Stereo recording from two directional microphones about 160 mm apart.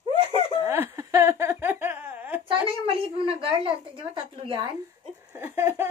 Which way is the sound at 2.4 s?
35° right (ahead or behind).